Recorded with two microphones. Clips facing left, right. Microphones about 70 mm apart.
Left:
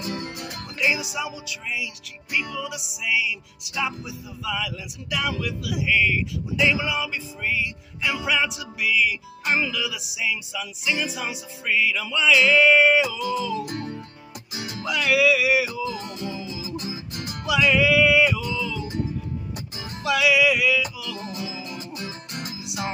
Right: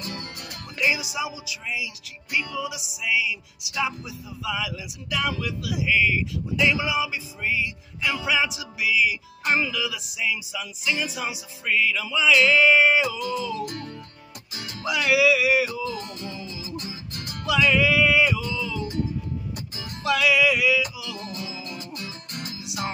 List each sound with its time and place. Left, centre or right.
0.0 s music: centre
0.7 s speech: centre
13.7 s music: left
14.8 s speech: centre
15.8 s music: centre
17.5 s music: centre
20.0 s speech: centre
21.2 s music: centre